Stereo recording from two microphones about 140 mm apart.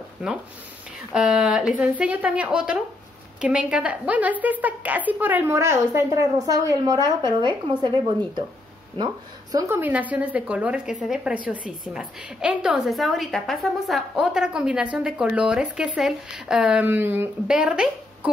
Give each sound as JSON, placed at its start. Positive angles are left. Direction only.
{"t": 0.2, "sound": "a woman's voice", "side_deg": -10}
{"t": 8.9, "sound": "speech", "side_deg": -30}
{"t": 9.7, "sound": "a woman's voice", "side_deg": -15}